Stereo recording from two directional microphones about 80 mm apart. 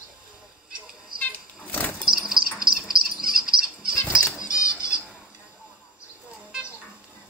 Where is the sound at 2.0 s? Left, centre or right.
Centre.